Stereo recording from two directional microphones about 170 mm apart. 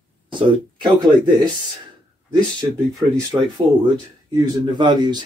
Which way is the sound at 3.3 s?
25° right (ahead or behind).